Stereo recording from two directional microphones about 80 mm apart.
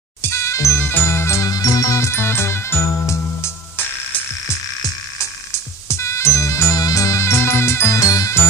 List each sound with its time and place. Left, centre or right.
0.2 s music: left
0.7 s music: left
1.5 s music: left
5.5 s music: left
8.0 s music: left